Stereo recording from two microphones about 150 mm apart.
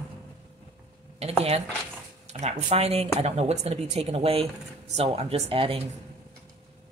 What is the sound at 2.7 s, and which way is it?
A woman's voice, 45° right (ahead or behind).